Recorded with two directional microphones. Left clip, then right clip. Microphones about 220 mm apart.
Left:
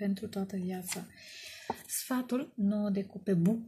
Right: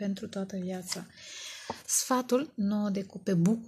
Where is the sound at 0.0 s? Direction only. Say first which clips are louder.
Right 1 dB; 35° right (ahead or behind).